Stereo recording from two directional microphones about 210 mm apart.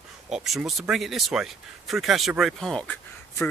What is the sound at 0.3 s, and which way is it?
Speech, centre (ahead or behind).